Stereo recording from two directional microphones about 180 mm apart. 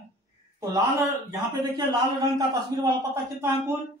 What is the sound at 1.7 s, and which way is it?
A man's voice, 20° right (ahead or behind).